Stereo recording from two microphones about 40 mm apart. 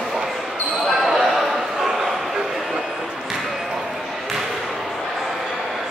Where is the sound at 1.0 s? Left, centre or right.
Centre.